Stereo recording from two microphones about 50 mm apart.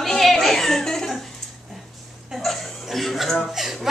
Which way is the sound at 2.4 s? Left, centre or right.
Centre.